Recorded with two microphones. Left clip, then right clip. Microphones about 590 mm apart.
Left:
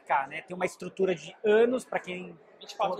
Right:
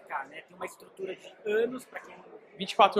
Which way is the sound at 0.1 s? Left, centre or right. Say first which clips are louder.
Left 9 dB; left.